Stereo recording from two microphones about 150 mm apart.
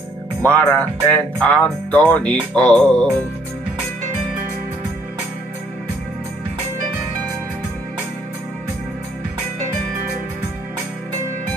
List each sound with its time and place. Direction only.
0.4 s music: 10° left (ahead or behind)